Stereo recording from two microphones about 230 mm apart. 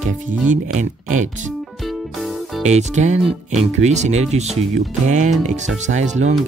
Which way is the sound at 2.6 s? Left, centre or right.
Right.